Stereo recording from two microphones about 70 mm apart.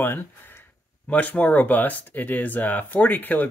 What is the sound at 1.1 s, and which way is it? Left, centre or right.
Speech, left.